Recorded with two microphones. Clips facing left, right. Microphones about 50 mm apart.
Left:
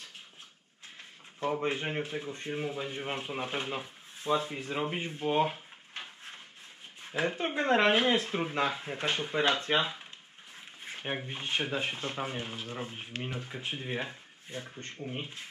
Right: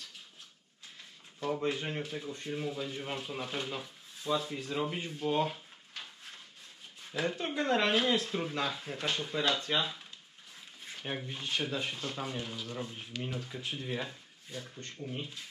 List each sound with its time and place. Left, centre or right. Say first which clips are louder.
1.4 s speech: left 2 dB; left